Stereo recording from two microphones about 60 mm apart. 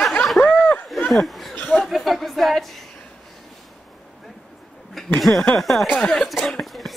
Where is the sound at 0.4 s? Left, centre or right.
Left.